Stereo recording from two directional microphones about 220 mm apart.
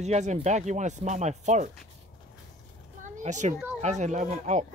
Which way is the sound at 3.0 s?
35° right (ahead or behind).